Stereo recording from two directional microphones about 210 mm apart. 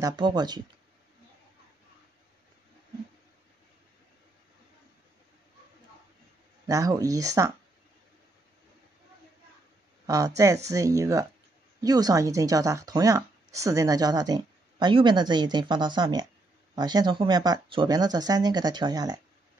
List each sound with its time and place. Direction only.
0.0 s speech: 20° right (ahead or behind)
6.7 s speech: 15° right (ahead or behind)
10.0 s speech: 15° right (ahead or behind)